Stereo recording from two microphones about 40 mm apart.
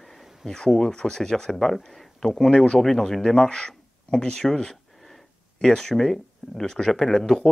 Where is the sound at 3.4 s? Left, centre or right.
Left.